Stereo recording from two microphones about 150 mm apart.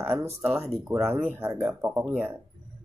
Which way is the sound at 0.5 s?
Centre (ahead or behind).